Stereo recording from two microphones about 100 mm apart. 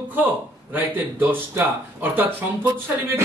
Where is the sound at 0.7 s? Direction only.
20° right (ahead or behind).